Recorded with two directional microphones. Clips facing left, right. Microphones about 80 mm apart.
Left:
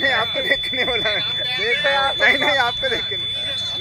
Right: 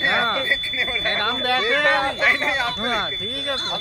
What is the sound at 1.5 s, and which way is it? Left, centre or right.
Speech, right.